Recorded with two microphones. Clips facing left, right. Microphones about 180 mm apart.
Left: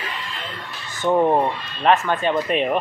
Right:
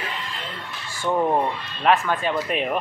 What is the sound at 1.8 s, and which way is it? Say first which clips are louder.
Speech: left 2 dB; 5° right (ahead or behind).